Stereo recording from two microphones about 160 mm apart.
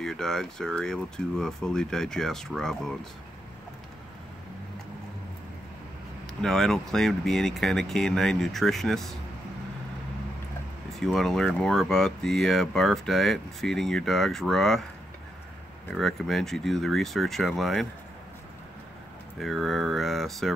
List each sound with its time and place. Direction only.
0.0 s speech: 5° left (ahead or behind)
6.4 s speech: 5° left (ahead or behind)
11.0 s speech: 5° left (ahead or behind)
15.9 s speech: centre (ahead or behind)
19.4 s speech: centre (ahead or behind)